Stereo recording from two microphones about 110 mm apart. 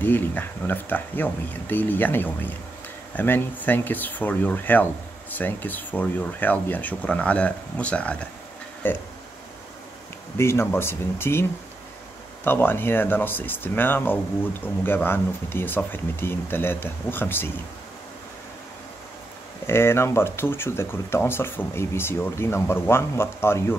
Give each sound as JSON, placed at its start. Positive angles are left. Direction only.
{"t": 0.0, "sound": "speech", "side_deg": 20}
{"t": 10.3, "sound": "speech", "side_deg": 25}
{"t": 12.4, "sound": "speech", "side_deg": 20}
{"t": 19.6, "sound": "speech", "side_deg": 25}